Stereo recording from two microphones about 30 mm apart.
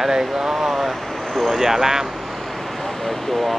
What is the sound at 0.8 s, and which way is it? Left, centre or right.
Speech, centre.